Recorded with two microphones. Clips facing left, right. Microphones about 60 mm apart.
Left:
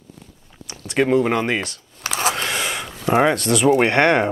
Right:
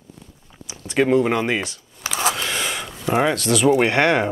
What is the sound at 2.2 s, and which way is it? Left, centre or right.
Speech, centre.